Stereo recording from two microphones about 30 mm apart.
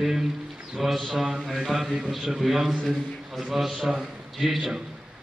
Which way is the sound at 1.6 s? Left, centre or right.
Right.